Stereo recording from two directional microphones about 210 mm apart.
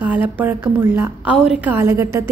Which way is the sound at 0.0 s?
10° right (ahead or behind).